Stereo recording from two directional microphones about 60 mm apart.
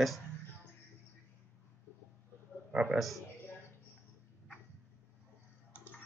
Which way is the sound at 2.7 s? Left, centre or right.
Centre.